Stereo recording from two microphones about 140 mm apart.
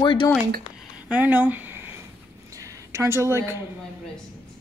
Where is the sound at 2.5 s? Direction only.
25° right (ahead or behind).